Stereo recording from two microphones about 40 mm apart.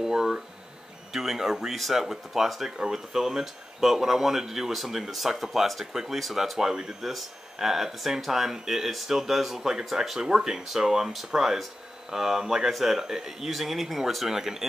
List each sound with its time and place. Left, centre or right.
0.0 s a sound: centre
1.1 s speech: centre
13.5 s speech: centre